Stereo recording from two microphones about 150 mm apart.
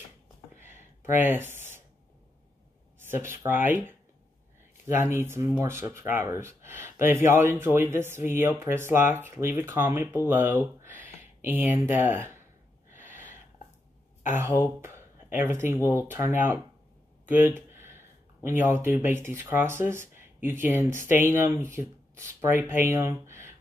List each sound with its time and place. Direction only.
0.6 s a sound: 15° right (ahead or behind)
3.0 s speech: 15° right (ahead or behind)
12.9 s gasp: 15° right (ahead or behind)
14.6 s speech: 15° right (ahead or behind)
17.3 s a sound: 15° right (ahead or behind)
18.4 s speech: 15° right (ahead or behind)